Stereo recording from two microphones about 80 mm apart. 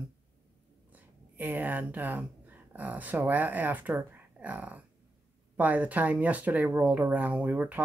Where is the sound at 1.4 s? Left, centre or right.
Right.